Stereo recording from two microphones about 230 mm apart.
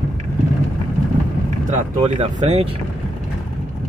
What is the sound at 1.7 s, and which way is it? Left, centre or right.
Speech, right.